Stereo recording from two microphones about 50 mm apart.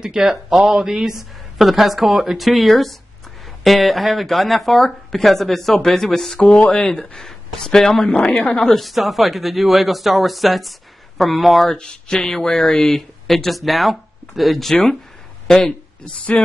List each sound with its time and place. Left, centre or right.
0.0 s speech: centre
11.7 s speech: centre
16.3 s a sound: centre